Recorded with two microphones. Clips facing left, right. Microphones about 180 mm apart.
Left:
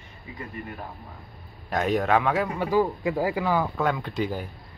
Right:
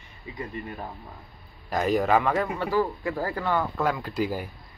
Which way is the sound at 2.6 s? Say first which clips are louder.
Left 2 dB; 15° left (ahead or behind).